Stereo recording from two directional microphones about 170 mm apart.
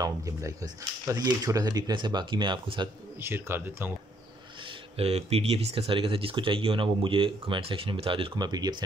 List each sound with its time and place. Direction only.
0.0 s speech: 20° right (ahead or behind)
3.2 s speech: 15° right (ahead or behind)
4.9 s speech: 35° right (ahead or behind)